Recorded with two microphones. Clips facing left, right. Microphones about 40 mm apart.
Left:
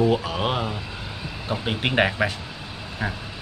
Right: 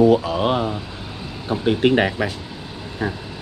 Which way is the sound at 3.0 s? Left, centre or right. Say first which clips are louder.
Right 4 dB; centre.